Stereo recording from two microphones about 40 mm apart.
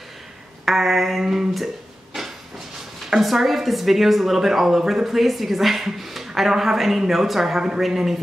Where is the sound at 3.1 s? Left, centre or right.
Centre.